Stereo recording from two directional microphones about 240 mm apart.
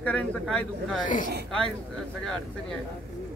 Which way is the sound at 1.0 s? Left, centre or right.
Left.